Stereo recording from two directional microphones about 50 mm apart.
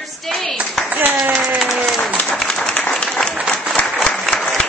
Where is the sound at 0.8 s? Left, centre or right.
Right.